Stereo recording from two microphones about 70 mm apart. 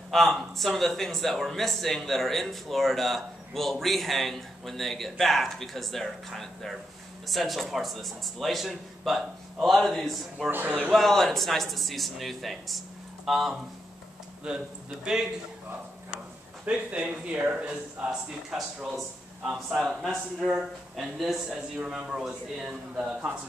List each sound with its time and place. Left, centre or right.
0.1 s speech: centre
10.5 s speech: right
10.9 s a man's voice: centre
16.6 s a man's voice: centre
19.7 s a man's voice: centre